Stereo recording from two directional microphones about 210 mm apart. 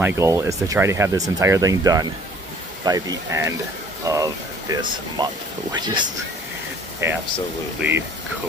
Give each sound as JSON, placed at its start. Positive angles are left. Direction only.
{"t": 0.0, "sound": "speech", "side_deg": -10}